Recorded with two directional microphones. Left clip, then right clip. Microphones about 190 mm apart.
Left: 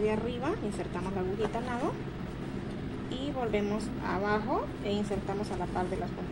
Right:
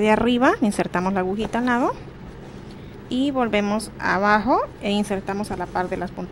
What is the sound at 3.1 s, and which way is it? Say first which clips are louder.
A woman's voice: right 11 dB; 55° right (ahead or behind).